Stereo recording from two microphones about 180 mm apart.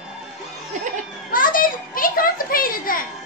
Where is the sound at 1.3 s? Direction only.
50° left (ahead or behind).